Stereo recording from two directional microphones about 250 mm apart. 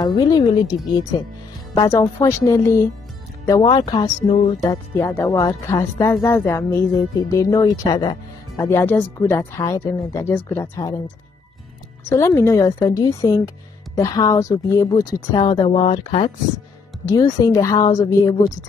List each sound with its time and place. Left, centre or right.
0.0 s speech: centre
1.8 s speech: centre
12.1 s speech: centre